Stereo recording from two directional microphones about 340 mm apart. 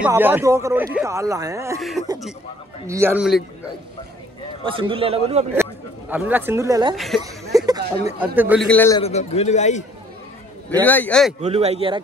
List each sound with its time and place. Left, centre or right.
0.0 s a man's voice: centre
4.6 s speech: centre
5.5 s a woman's voice: centre
7.2 s a sound: centre
8.4 s a man's voice: centre
10.7 s a man's voice: centre
11.4 s speech: centre